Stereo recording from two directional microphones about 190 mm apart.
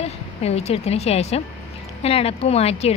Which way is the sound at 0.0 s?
35° left (ahead or behind).